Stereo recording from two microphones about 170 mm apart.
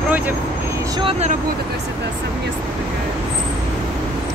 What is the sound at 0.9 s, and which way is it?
Speech, 30° right (ahead or behind).